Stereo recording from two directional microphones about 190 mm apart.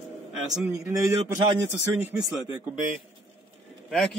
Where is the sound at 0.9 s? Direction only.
15° right (ahead or behind).